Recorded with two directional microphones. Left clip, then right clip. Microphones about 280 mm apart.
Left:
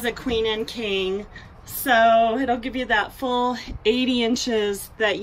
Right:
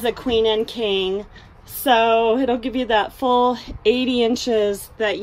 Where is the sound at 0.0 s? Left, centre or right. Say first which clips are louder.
Right 5 dB; centre.